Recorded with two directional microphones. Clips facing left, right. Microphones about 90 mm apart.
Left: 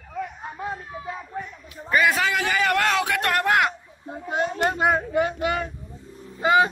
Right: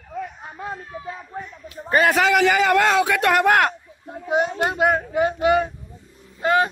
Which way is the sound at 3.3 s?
70° right (ahead or behind).